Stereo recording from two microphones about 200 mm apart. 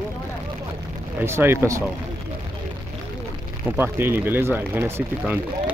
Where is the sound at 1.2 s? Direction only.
10° right (ahead or behind).